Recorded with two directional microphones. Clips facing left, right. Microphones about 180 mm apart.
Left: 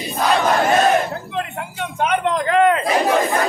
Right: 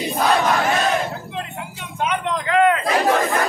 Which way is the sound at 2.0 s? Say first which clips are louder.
Left 4 dB; 55° left (ahead or behind).